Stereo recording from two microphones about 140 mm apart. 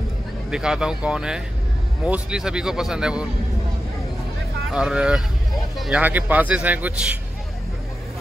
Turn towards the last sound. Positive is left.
turn(degrees=-10)  # may be behind; listen again after turning